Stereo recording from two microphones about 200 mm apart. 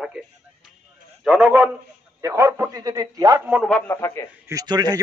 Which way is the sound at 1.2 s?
5° right (ahead or behind).